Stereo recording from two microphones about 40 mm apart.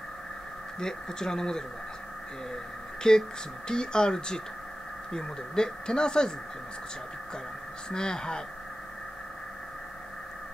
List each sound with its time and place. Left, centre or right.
0.7 s speech: centre
3.0 s speech: centre
7.9 s speech: centre